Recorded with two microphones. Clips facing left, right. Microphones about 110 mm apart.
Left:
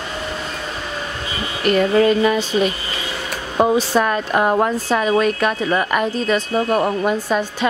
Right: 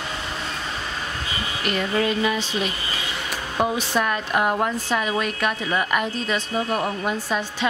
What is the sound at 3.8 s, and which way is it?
A woman's voice, 40° left (ahead or behind).